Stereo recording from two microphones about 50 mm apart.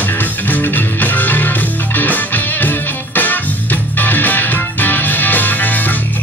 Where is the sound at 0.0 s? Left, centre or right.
Left.